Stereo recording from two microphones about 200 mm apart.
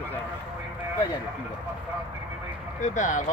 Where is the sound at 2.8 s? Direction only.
35° left (ahead or behind).